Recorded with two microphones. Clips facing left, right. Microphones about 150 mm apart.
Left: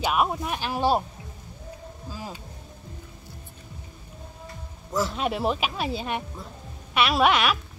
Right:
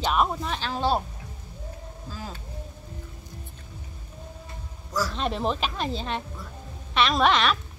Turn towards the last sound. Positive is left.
turn(degrees=10)  # may be behind; listen again after turning